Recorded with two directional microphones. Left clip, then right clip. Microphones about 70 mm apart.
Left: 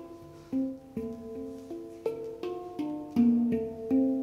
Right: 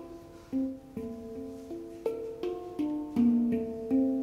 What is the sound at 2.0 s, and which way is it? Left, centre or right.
Music, left.